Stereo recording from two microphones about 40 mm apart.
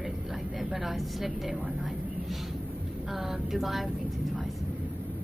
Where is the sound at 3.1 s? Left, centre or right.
Centre.